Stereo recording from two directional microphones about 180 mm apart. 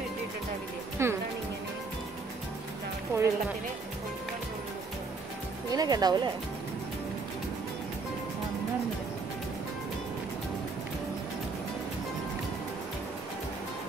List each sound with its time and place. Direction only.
1.0 s speech: 15° right (ahead or behind)
3.1 s music: 15° right (ahead or behind)
5.7 s speech: 20° right (ahead or behind)